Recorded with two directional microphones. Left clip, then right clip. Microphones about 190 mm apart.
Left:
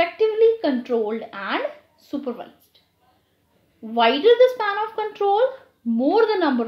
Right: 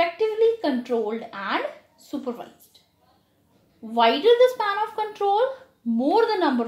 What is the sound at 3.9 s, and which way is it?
A woman's voice, 15° left (ahead or behind).